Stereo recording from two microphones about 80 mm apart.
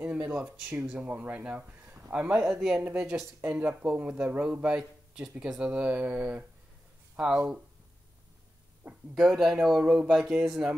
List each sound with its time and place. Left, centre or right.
0.0 s speech: centre
4.1 s speech: right
4.4 s speech: centre
8.8 s speech: centre